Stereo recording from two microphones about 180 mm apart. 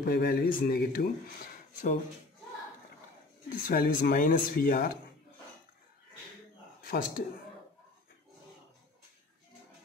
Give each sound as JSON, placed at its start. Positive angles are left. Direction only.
{"t": 0.0, "sound": "speech", "side_deg": 60}
{"t": 3.4, "sound": "speech", "side_deg": 50}
{"t": 6.8, "sound": "speech", "side_deg": 55}